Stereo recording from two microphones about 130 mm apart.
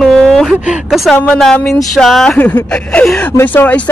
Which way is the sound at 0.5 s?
10° right (ahead or behind).